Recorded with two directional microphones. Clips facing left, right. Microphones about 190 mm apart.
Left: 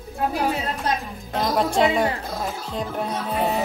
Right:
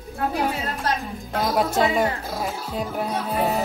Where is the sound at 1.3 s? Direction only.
5° right (ahead or behind).